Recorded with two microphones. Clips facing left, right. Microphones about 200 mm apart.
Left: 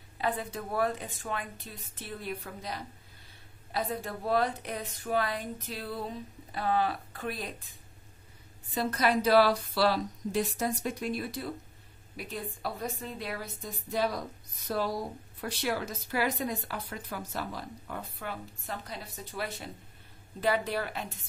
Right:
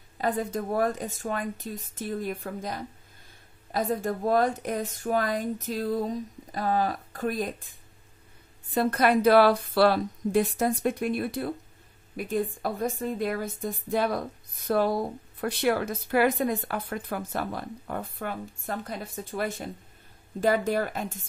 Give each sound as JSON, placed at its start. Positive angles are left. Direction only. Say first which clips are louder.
{"t": 0.2, "sound": "a woman's voice", "louder": "right 5 dB", "side_deg": -45}
{"t": 8.7, "sound": "a woman's voice", "louder": "right 5 dB", "side_deg": -55}